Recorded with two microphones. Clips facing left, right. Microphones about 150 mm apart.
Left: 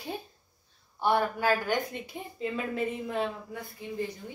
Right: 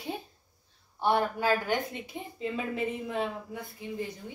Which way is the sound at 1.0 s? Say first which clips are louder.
Even; 25° right (ahead or behind).